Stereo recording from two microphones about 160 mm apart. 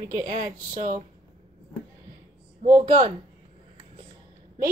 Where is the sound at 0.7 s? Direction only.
55° right (ahead or behind).